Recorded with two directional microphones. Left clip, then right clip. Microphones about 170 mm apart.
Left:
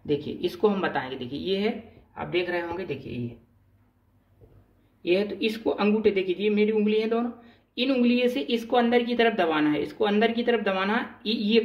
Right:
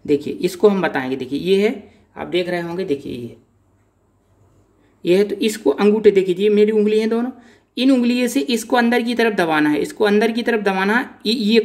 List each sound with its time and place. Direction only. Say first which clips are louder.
0.0 s speech: right 9 dB; 65° right (ahead or behind)
5.0 s speech: right 8 dB; 65° right (ahead or behind)